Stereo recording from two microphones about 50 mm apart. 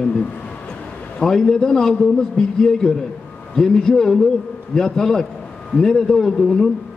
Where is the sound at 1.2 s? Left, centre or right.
Centre.